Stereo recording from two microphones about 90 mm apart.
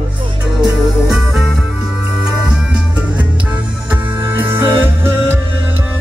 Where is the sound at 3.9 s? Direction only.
20° right (ahead or behind).